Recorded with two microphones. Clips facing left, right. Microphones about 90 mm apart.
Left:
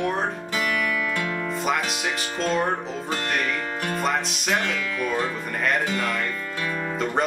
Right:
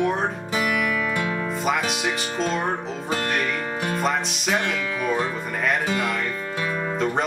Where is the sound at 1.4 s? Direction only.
Centre (ahead or behind).